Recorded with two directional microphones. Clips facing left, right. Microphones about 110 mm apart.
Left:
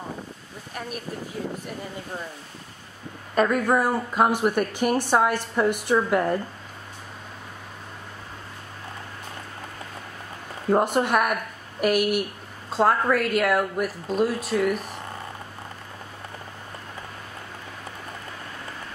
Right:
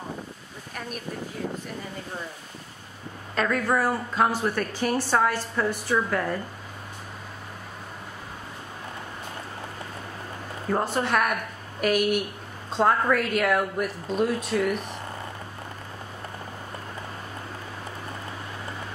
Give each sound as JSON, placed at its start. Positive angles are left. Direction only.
{"t": 3.3, "sound": "a woman's voice", "side_deg": 15}
{"t": 10.7, "sound": "a woman's voice", "side_deg": 15}